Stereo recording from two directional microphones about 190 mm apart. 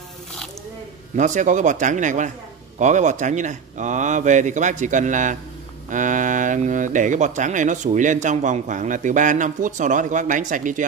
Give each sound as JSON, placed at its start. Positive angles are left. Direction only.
{"t": 1.1, "sound": "speech", "side_deg": -40}